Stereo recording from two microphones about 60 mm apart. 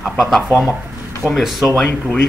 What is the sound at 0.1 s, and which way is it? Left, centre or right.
Speech, centre.